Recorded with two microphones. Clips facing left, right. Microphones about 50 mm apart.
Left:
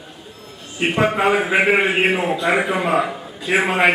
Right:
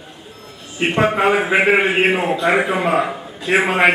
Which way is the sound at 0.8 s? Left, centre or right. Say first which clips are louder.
Right 1 dB; centre.